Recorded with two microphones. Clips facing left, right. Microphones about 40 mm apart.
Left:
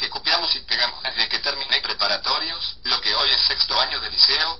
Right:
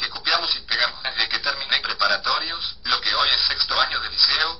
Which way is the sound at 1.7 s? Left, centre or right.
Centre.